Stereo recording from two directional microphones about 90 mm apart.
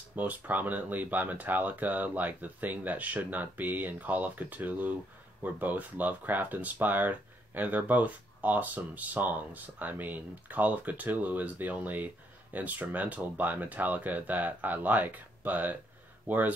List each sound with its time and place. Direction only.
0.1 s speech: 20° right (ahead or behind)